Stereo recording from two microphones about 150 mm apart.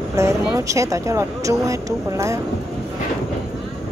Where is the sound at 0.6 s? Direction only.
20° right (ahead or behind).